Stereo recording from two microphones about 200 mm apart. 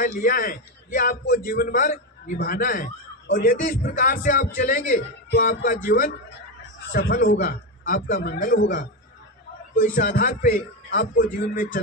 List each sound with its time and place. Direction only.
0.0 s a man's voice: 45° left (ahead or behind)
5.3 s a man's voice: 50° left (ahead or behind)